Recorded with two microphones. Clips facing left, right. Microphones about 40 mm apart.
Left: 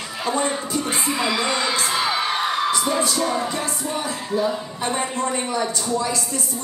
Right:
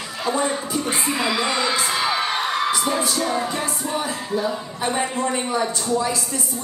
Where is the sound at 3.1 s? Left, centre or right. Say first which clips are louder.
Even; centre.